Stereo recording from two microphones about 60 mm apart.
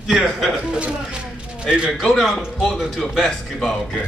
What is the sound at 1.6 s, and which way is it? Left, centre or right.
Speech, centre.